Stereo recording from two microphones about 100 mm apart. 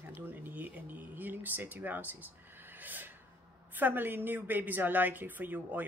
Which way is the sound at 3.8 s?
20° right (ahead or behind).